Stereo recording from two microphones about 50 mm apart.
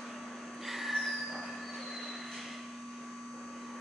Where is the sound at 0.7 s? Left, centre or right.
Centre.